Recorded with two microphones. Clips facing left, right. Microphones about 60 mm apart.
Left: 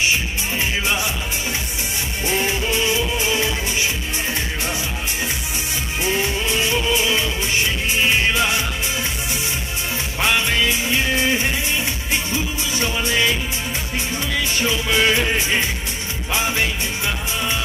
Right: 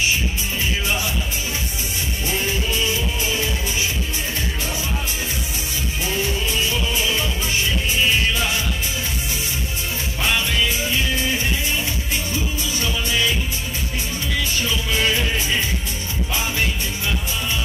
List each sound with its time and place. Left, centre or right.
0.8 s music: left
2.2 s music: left
6.0 s music: left
12.1 s music: left
14.5 s music: left